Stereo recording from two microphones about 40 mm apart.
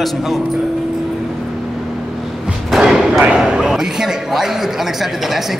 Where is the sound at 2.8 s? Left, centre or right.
Centre.